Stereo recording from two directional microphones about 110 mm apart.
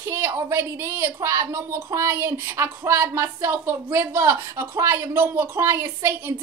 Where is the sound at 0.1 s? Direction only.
25° right (ahead or behind).